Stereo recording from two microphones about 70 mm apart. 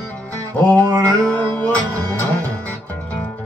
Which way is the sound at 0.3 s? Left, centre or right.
Left.